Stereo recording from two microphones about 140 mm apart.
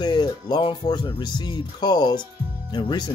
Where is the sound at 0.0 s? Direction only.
30° left (ahead or behind).